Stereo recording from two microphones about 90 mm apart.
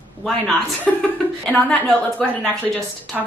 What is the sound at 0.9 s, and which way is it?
A woman's voice, 10° left (ahead or behind).